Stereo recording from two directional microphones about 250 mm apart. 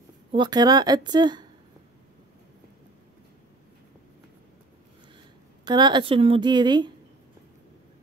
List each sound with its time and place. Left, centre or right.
0.3 s a woman's voice: centre
5.7 s a woman's voice: centre